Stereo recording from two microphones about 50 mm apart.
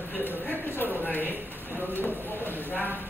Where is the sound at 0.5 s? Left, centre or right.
Left.